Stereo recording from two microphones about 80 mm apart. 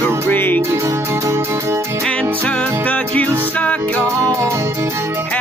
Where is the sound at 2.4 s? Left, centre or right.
Centre.